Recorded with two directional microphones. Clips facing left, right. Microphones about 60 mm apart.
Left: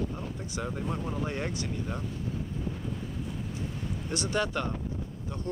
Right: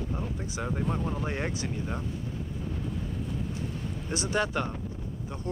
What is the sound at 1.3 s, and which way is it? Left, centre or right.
Speech, right.